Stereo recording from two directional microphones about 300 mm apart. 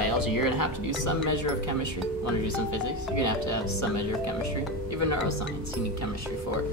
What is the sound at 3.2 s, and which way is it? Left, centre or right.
Speech, left.